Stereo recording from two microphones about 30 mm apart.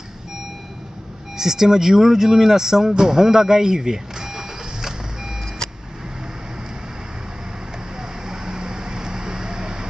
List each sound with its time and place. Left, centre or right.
1.3 s speech: centre
2.9 s vehicle: right
8.3 s vehicle: right